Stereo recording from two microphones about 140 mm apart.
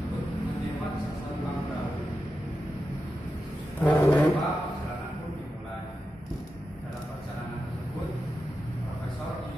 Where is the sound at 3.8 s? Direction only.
20° left (ahead or behind).